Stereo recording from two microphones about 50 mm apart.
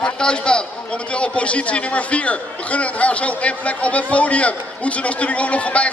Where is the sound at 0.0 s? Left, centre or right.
Centre.